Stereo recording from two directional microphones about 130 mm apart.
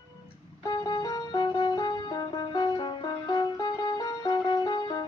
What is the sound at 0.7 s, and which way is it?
Music, 35° left (ahead or behind).